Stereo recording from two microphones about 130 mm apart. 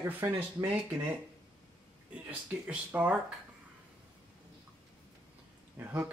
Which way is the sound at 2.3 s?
10° right (ahead or behind).